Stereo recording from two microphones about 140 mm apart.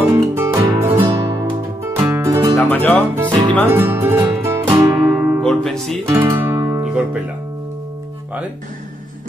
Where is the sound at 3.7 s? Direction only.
15° right (ahead or behind).